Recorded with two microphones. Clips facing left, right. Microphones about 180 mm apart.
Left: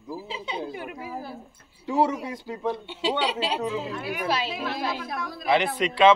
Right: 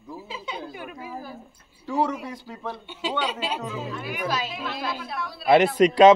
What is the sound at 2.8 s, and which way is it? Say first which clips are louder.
A woman's voice: left 2 dB; 30° left (ahead or behind).